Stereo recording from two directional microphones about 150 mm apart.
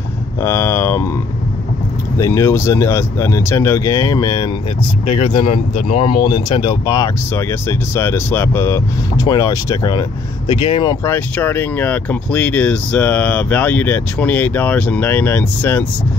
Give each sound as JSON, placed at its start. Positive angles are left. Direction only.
{"t": 0.4, "sound": "a sound", "side_deg": 15}
{"t": 2.1, "sound": "speech", "side_deg": 20}
{"t": 5.0, "sound": "speech", "side_deg": 35}
{"t": 11.1, "sound": "speech", "side_deg": 10}